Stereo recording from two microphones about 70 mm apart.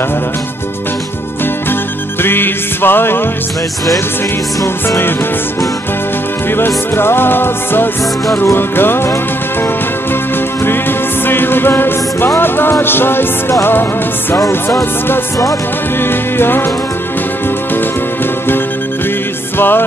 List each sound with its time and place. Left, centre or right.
2.2 s music: left
4.8 s music: left
6.5 s music: left
10.6 s music: left
16.0 s music: left